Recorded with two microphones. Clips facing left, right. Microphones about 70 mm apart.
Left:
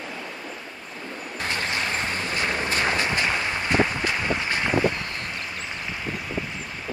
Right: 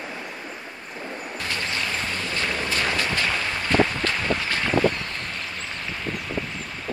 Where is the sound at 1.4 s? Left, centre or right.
Left.